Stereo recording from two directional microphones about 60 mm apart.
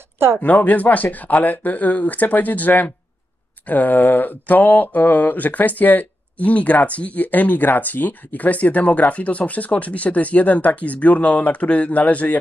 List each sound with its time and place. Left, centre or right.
0.4 s mantra: left